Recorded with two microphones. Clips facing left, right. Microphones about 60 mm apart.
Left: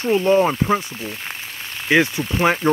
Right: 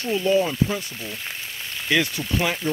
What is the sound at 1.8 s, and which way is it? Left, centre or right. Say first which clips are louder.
Speech: left 6 dB; left.